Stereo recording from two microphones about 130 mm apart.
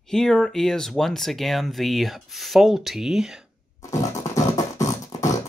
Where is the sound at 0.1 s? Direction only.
5° left (ahead or behind).